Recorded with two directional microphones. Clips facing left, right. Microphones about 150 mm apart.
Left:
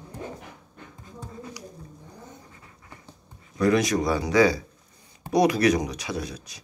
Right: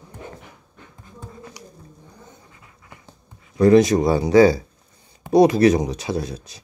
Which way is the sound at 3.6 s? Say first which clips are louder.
Right 8 dB; 25° right (ahead or behind).